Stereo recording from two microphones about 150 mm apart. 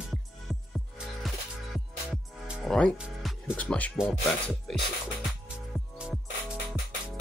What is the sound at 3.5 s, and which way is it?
Speech, 10° left (ahead or behind).